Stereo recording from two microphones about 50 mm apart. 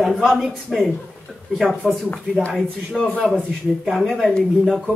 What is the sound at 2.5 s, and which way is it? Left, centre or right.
Speech, centre.